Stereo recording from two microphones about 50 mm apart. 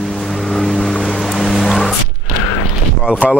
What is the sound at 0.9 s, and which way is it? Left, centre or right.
Music, centre.